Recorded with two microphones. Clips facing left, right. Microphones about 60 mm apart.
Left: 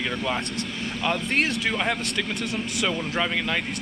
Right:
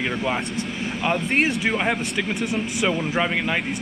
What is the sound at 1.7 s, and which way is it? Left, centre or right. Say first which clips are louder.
Speech: right 3 dB; centre.